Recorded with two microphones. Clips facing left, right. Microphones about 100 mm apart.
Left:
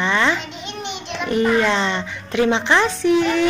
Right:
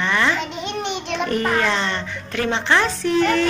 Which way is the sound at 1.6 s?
20° left (ahead or behind).